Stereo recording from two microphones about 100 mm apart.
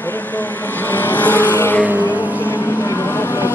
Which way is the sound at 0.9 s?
20° left (ahead or behind).